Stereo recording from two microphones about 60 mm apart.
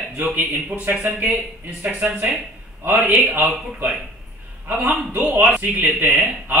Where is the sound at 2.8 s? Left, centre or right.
Right.